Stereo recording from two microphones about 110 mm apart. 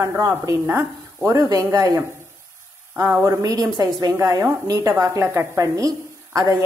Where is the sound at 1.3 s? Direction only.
35° right (ahead or behind).